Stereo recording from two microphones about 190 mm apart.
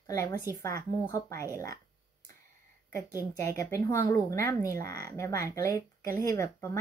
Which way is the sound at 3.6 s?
15° left (ahead or behind).